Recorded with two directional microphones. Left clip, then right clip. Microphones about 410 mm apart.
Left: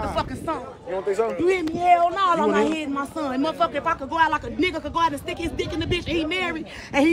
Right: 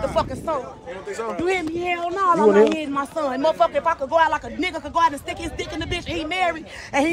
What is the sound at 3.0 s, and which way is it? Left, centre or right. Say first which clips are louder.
Speech: right 3 dB; centre.